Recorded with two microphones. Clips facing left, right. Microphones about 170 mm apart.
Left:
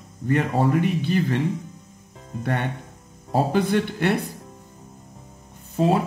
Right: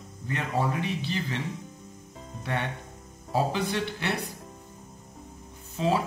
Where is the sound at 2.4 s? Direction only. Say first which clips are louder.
Left 5 dB; 50° left (ahead or behind).